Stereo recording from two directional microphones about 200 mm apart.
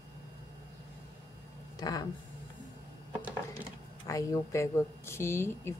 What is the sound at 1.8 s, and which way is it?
Speech, 20° left (ahead or behind).